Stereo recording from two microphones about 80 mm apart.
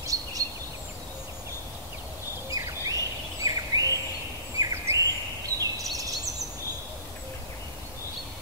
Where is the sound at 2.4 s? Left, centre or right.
Right.